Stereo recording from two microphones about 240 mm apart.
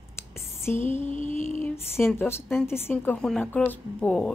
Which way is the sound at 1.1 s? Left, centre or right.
Right.